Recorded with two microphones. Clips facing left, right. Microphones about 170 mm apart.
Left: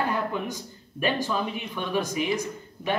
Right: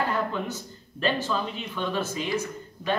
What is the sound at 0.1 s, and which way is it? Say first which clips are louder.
A man's voice: even; 15° left (ahead or behind).